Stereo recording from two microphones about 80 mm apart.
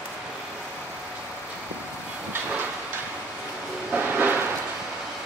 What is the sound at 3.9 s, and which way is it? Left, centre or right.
Train, right.